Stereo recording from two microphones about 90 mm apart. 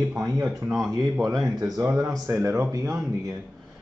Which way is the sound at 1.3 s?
40° right (ahead or behind).